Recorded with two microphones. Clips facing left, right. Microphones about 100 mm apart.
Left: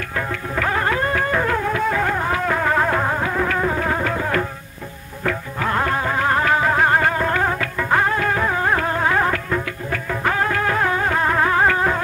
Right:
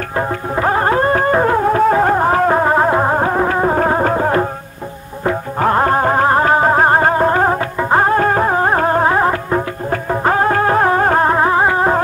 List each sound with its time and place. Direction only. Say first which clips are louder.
0.6 s music: right 6 dB; 35° right (ahead or behind)
5.6 s music: right 8 dB; 40° right (ahead or behind)
11.3 s music: right 4 dB; 25° right (ahead or behind)